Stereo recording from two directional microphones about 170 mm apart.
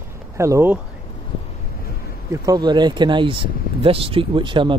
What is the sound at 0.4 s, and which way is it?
Speech, 15° right (ahead or behind).